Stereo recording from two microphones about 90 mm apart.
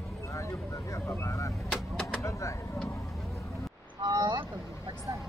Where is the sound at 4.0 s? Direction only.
40° right (ahead or behind).